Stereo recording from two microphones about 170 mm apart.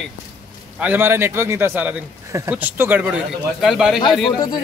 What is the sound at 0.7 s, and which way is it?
A man's voice, 10° right (ahead or behind).